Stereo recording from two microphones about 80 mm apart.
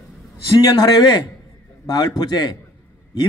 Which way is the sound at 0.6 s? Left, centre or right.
Left.